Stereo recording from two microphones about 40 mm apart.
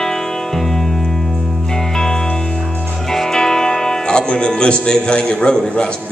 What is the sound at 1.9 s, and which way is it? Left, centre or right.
Music, centre.